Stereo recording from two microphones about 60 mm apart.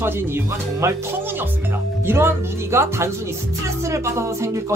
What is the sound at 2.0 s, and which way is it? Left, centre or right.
Speech, right.